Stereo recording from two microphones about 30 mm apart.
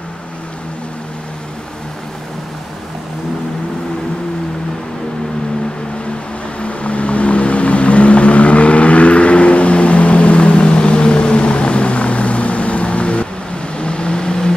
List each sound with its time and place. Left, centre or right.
6.6 s vehicle: left